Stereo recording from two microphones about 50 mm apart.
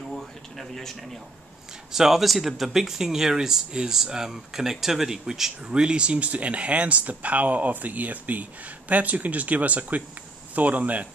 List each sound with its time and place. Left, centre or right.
0.1 s a sound: centre
0.7 s a man's voice: centre
1.9 s speech: centre
5.7 s speech: centre